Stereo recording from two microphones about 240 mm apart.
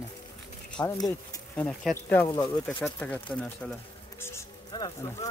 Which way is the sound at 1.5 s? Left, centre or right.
Centre.